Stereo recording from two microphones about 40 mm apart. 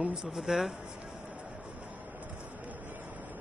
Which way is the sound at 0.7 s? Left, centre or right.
Right.